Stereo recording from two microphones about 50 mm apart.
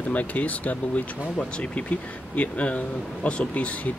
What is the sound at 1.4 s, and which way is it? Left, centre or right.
Speech, left.